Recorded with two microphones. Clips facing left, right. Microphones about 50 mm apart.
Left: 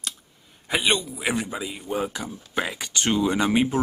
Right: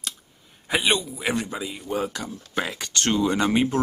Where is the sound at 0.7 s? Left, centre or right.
Centre.